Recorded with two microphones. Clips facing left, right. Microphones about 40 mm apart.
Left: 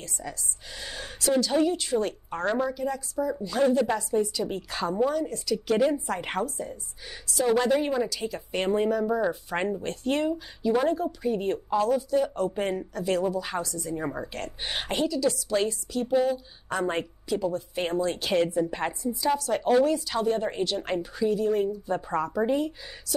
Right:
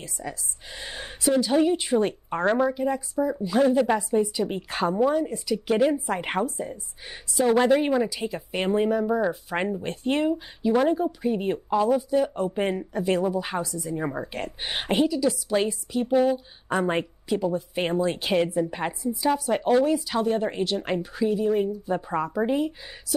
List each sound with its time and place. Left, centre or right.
0.0 s speech: centre
0.7 s speech: right
5.2 s speech: centre